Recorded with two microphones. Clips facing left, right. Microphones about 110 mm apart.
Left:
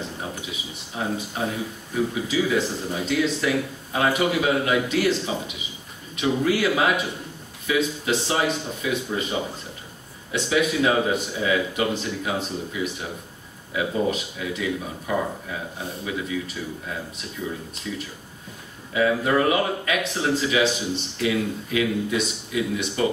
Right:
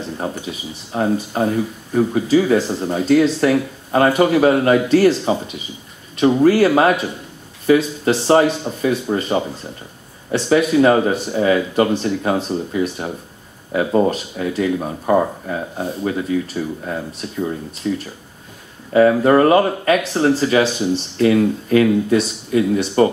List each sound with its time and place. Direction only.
0.2 s speech: 50° right (ahead or behind)